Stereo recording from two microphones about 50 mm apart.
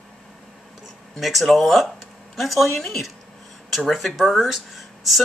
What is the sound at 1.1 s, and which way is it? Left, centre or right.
Speech, centre.